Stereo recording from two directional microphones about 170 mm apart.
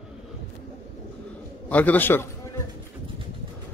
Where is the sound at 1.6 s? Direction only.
10° left (ahead or behind).